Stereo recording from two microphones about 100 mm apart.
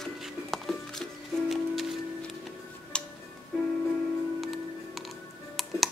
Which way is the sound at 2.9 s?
10° left (ahead or behind).